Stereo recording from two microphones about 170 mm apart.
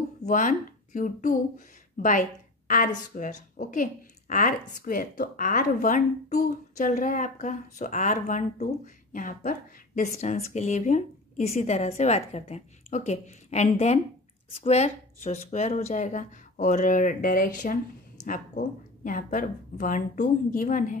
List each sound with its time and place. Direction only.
0.2 s a woman's voice: 50° left (ahead or behind)